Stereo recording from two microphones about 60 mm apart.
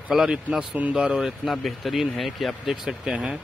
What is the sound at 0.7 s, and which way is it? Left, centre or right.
Speech, right.